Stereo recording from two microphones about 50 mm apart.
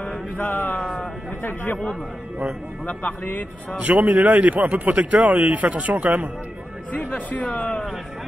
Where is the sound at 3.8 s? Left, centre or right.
Right.